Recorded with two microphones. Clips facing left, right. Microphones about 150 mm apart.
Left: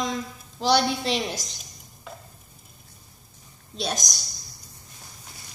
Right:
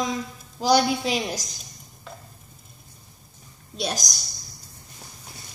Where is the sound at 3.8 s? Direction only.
Centre (ahead or behind).